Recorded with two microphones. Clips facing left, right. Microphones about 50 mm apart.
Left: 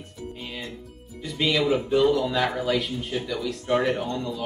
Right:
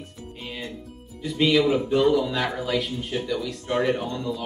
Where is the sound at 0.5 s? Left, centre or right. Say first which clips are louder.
Right 1 dB; centre.